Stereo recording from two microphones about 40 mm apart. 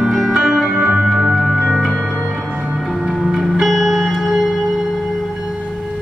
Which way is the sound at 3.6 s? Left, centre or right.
Centre.